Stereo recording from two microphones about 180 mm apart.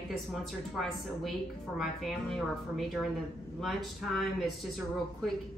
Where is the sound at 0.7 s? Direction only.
Centre (ahead or behind).